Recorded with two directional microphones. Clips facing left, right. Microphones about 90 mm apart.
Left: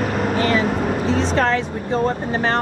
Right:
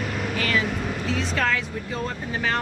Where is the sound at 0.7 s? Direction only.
50° left (ahead or behind).